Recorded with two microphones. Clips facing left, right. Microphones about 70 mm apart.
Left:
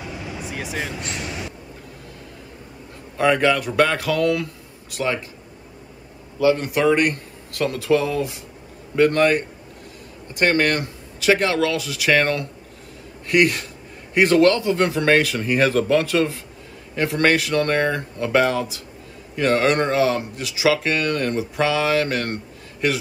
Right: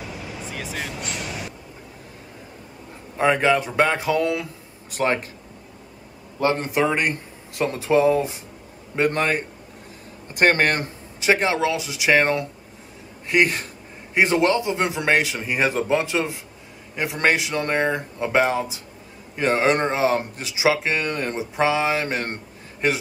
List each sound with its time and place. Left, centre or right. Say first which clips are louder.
0.5 s vehicle: left 3 dB; centre
3.2 s speech: left 1 dB; right
4.9 s speech: right 2 dB; right
6.4 s speech: left 3 dB; right
10.3 s speech: even; right